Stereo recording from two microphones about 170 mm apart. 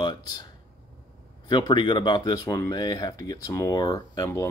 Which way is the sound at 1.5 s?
25° left (ahead or behind).